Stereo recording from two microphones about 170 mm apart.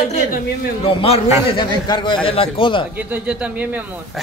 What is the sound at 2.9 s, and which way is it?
Speech, 10° right (ahead or behind).